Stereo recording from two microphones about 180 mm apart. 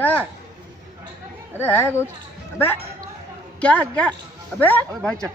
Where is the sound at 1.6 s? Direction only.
10° left (ahead or behind).